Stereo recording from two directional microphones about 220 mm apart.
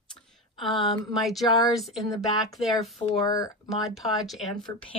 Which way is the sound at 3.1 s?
15° left (ahead or behind).